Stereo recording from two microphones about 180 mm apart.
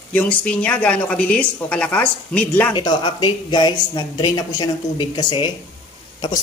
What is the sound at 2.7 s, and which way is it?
Speech, 25° left (ahead or behind).